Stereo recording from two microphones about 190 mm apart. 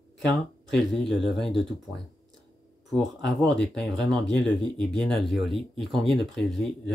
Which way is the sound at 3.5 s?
5° left (ahead or behind).